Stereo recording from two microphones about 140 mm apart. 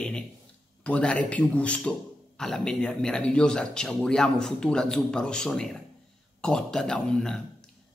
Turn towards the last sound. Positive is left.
turn(degrees=5)  # may be behind; listen again after turning